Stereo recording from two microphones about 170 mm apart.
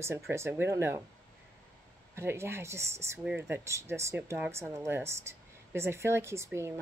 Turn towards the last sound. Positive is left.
turn(degrees=-15)  # may be behind; listen again after turning